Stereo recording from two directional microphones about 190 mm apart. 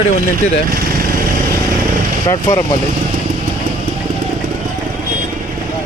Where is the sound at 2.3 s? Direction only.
15° left (ahead or behind).